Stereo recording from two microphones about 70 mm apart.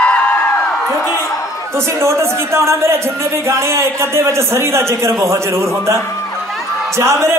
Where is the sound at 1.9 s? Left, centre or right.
Right.